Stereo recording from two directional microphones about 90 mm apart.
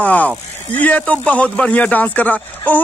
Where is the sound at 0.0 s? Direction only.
15° left (ahead or behind).